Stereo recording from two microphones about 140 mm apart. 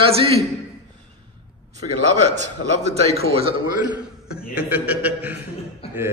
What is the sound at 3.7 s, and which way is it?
A man's voice, 10° right (ahead or behind).